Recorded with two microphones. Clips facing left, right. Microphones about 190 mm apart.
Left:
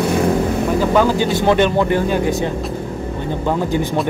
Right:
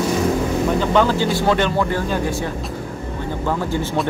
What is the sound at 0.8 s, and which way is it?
Speech, 10° left (ahead or behind).